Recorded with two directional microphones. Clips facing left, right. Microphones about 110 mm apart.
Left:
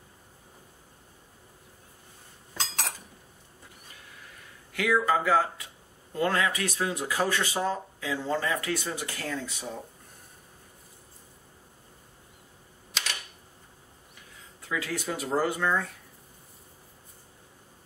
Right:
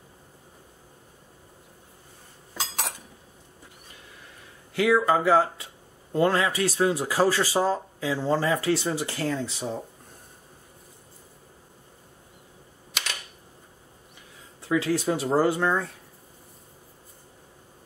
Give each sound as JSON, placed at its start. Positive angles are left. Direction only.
{"t": 2.5, "sound": "dishes", "side_deg": -5}
{"t": 4.7, "sound": "speech", "side_deg": -25}
{"t": 14.6, "sound": "speech", "side_deg": -30}